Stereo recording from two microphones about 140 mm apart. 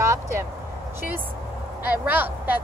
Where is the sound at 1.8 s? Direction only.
10° right (ahead or behind).